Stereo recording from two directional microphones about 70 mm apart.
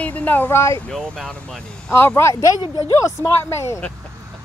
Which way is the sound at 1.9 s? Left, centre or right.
Left.